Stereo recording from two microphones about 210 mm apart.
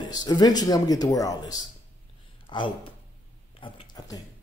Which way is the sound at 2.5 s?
20° left (ahead or behind).